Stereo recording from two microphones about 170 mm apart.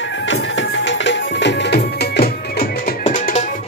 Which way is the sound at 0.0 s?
90° left.